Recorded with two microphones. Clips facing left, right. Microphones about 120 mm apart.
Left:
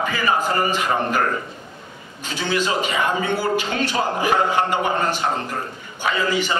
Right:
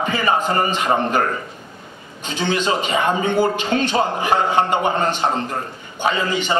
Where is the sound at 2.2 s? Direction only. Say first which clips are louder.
Right 2 dB; 25° right (ahead or behind).